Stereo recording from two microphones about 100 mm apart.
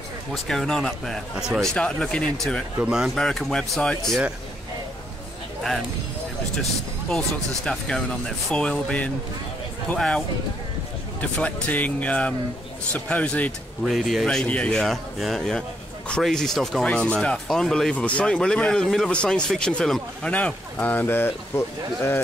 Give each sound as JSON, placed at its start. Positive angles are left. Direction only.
{"t": 0.3, "sound": "speech", "side_deg": 5}
{"t": 2.8, "sound": "speech", "side_deg": -10}
{"t": 3.2, "sound": "speech", "side_deg": 5}
{"t": 6.5, "sound": "speech", "side_deg": 5}
{"t": 13.8, "sound": "speech", "side_deg": 0}
{"t": 14.2, "sound": "speech", "side_deg": 10}